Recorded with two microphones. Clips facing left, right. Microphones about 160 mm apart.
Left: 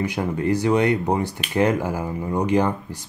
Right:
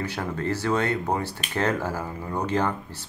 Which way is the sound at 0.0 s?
15° left (ahead or behind).